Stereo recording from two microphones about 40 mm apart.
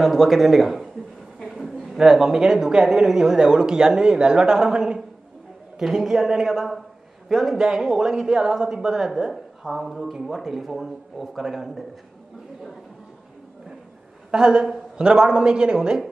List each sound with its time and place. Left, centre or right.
0.0 s a woman's voice: centre
1.6 s a sound: centre
1.9 s a woman's voice: centre
7.6 s a woman's voice: centre
14.3 s a woman's voice: right